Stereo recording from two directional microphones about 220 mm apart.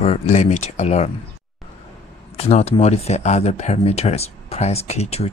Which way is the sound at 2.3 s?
30° left (ahead or behind).